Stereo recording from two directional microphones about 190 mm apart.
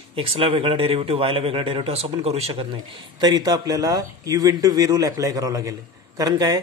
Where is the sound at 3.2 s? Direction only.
20° right (ahead or behind).